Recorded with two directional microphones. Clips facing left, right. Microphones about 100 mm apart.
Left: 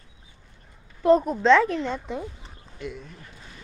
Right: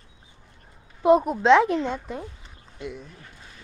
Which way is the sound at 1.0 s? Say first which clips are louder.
Even; 10° right (ahead or behind).